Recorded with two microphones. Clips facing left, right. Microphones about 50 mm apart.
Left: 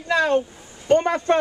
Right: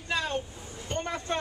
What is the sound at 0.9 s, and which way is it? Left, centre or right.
Speech, left.